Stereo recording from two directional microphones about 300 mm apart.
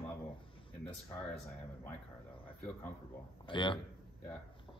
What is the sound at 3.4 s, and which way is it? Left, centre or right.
Speech, centre.